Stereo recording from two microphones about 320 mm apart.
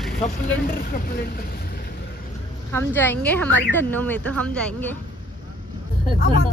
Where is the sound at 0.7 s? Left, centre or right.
Left.